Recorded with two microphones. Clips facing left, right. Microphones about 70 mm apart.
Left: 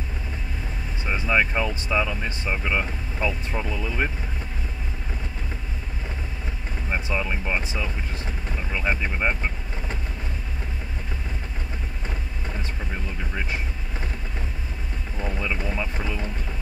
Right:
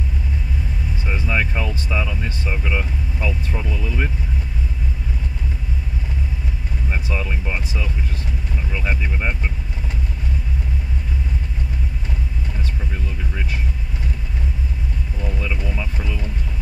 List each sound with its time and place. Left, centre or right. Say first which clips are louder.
1.0 s speech: left 1 dB; centre
7.1 s speech: left 1 dB; centre
8.7 s speech: left 1 dB; centre
12.9 s vehicle: right 1 dB; centre
15.1 s boat: left 1 dB; centre
15.5 s speech: even; left